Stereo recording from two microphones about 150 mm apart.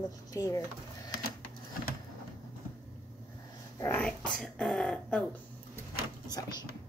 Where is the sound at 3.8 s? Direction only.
10° left (ahead or behind).